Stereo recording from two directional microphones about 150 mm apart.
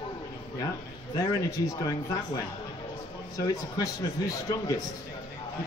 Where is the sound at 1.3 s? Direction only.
25° left (ahead or behind).